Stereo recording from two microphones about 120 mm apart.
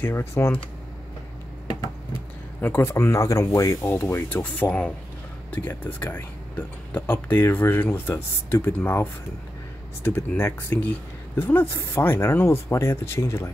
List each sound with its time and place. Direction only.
0.0 s speech: 20° left (ahead or behind)
2.6 s speech: 20° left (ahead or behind)